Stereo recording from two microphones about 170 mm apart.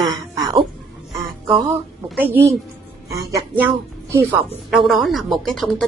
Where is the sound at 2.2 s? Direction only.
10° right (ahead or behind).